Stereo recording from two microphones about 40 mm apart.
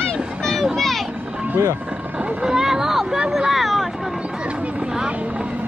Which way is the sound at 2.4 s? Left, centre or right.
Centre.